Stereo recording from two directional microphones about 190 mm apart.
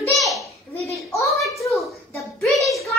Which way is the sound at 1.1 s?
15° left (ahead or behind).